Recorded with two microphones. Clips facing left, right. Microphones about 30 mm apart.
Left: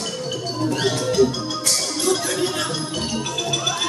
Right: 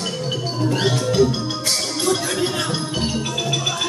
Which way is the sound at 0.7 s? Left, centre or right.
Centre.